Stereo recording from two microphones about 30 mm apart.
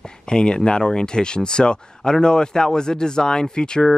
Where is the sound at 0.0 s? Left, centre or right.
Left.